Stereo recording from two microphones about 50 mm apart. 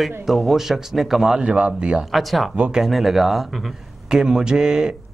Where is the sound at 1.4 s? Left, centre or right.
Right.